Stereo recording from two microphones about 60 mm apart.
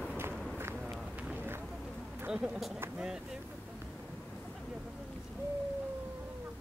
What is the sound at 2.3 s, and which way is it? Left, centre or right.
Speech, centre.